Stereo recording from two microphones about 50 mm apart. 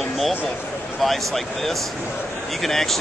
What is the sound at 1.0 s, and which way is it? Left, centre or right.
Speech, centre.